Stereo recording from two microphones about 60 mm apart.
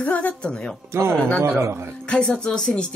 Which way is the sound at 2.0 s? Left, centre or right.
Centre.